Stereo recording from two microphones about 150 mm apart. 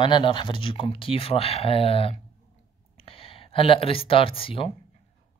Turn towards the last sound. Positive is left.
turn(degrees=40)  # may be behind; listen again after turning